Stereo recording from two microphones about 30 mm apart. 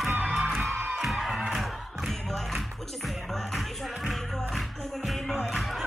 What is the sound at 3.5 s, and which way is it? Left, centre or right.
Music, centre.